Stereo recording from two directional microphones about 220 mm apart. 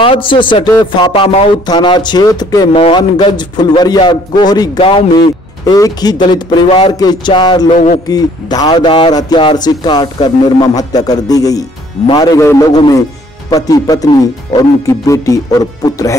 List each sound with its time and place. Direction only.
0.0 s a man's voice: 25° left (ahead or behind)
7.7 s speech: 30° left (ahead or behind)
8.1 s speech: 15° left (ahead or behind)